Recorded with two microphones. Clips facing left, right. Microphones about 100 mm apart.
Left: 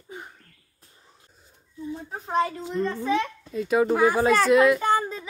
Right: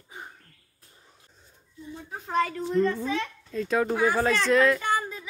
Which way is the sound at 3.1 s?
20° left (ahead or behind).